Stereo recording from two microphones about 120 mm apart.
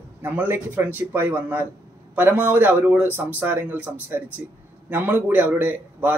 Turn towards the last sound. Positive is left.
turn(degrees=-15)  # may be behind; listen again after turning